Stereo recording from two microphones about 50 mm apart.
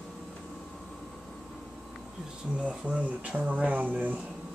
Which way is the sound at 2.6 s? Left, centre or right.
Right.